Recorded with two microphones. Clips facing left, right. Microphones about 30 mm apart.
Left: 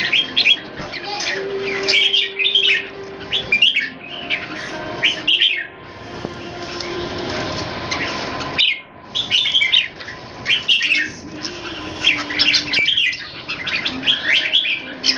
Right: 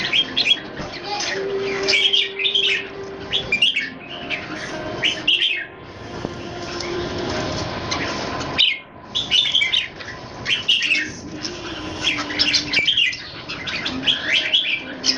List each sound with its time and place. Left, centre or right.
0.0 s bird: centre
6.7 s train: centre
10.4 s bird: centre
15.1 s bird: left